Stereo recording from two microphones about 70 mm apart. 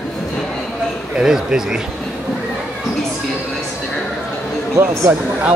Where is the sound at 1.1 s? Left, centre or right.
Centre.